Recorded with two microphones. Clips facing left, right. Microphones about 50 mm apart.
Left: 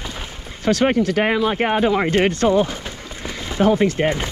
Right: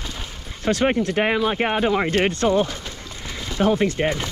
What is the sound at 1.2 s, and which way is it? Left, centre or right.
Speech, left.